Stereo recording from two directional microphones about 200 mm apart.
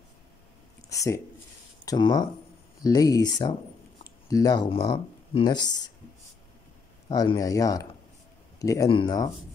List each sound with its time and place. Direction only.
0.8 s speech: 15° left (ahead or behind)
7.1 s speech: 20° left (ahead or behind)